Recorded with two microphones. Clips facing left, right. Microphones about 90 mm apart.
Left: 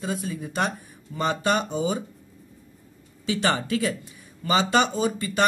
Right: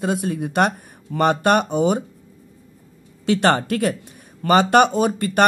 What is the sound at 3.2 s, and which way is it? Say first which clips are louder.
A man's voice: right 7 dB; 60° right (ahead or behind).